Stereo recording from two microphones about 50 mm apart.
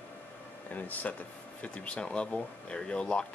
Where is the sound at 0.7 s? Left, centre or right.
Left.